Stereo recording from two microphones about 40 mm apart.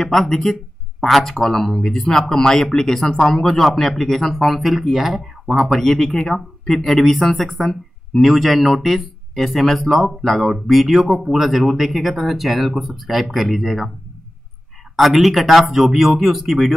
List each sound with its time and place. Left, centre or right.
0.0 s speech: centre
15.0 s speech: centre